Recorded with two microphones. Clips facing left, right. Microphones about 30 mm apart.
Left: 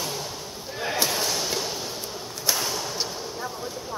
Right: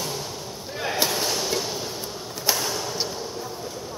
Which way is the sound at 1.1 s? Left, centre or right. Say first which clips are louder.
Right 1 dB; centre.